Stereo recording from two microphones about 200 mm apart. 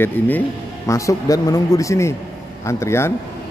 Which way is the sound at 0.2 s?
10° left (ahead or behind).